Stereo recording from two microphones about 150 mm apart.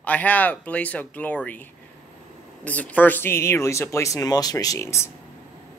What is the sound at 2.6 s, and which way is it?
Speech, 10° left (ahead or behind).